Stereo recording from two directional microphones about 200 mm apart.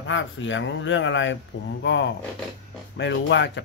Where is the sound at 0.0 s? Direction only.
70° left (ahead or behind).